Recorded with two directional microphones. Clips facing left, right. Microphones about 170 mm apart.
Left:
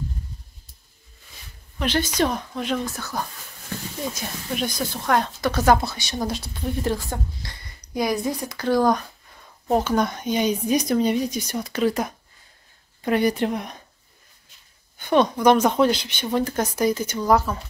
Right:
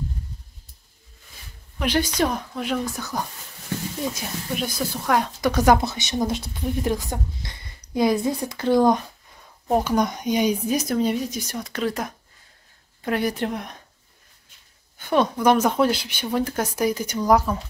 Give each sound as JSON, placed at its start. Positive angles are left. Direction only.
{"t": 1.8, "sound": "speech", "side_deg": -10}
{"t": 4.6, "sound": "speech", "side_deg": -5}
{"t": 9.7, "sound": "speech", "side_deg": -10}
{"t": 15.0, "sound": "speech", "side_deg": -5}